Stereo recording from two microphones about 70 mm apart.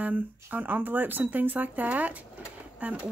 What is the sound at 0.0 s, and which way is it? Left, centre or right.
Speech, right.